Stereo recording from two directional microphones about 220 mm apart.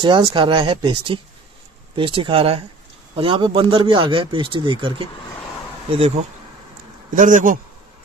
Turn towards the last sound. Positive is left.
turn(degrees=-35)  # may be behind; listen again after turning